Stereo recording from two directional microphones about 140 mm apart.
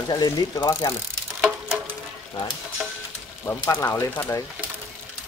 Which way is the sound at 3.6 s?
20° left (ahead or behind).